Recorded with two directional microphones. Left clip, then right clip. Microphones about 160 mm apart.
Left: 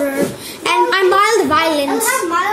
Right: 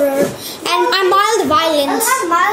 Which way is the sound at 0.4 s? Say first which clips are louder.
Left 1 dB; 20° left (ahead or behind).